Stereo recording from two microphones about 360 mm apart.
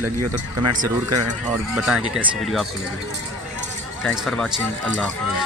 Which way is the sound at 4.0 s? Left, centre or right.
Centre.